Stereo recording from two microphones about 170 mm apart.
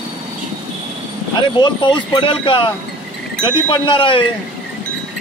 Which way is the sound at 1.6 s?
25° left (ahead or behind).